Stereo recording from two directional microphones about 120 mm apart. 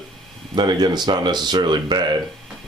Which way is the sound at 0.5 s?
35° right (ahead or behind).